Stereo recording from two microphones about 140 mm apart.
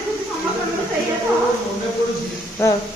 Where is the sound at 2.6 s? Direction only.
20° left (ahead or behind).